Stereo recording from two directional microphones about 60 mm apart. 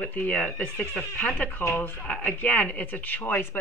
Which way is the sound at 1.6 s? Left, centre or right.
Left.